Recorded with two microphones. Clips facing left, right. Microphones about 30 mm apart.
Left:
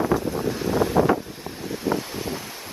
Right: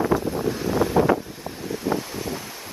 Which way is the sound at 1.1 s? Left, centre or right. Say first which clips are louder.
Right 1 dB; centre.